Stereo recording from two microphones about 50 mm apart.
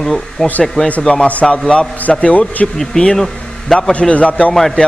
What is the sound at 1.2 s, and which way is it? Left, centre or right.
A man's voice, left.